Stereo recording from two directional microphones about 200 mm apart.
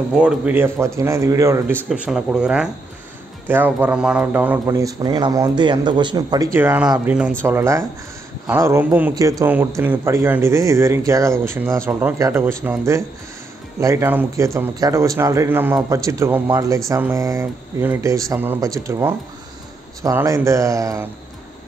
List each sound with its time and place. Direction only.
0.1 s speech: 5° right (ahead or behind)
1.9 s speech: 5° right (ahead or behind)